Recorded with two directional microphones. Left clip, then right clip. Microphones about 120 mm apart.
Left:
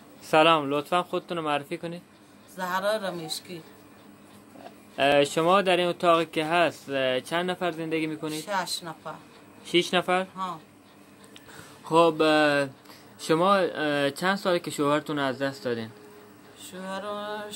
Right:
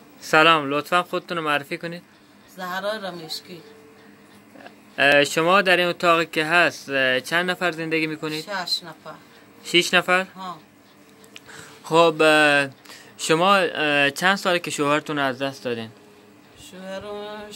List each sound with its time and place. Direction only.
0.2 s speech: 15° right (ahead or behind)
2.5 s a man's voice: 10° left (ahead or behind)
5.1 s speech: 15° right (ahead or behind)
8.5 s a man's voice: 10° left (ahead or behind)
9.7 s speech: 20° right (ahead or behind)
11.3 s speech: 15° right (ahead or behind)
16.6 s a sound: 5° left (ahead or behind)